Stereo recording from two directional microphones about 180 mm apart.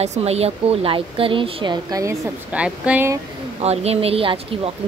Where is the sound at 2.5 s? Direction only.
5° right (ahead or behind).